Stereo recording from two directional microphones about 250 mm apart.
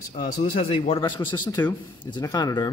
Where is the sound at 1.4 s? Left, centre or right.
Centre.